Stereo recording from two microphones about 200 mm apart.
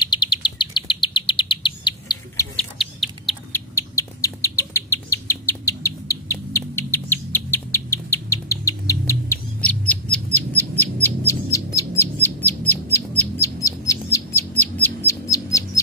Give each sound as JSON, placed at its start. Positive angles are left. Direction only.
{"t": 0.0, "sound": "chirp", "side_deg": 20}
{"t": 2.5, "sound": "bird", "side_deg": 0}
{"t": 3.5, "sound": "bird", "side_deg": 15}